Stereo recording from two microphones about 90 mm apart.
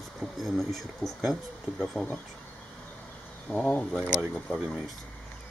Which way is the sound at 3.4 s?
5° left (ahead or behind).